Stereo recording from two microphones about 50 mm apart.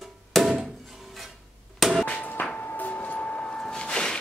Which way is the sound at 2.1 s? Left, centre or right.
Left.